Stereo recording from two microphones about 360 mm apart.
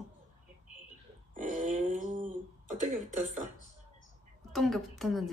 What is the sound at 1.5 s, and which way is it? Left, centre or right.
Speech, right.